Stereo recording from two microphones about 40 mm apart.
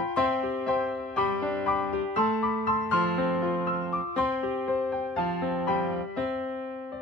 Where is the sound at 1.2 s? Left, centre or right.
Left.